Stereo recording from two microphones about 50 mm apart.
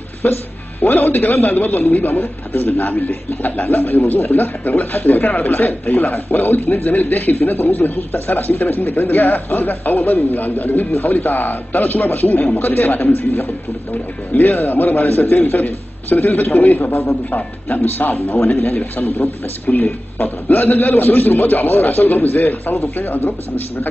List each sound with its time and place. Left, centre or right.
0.2 s a man's voice: left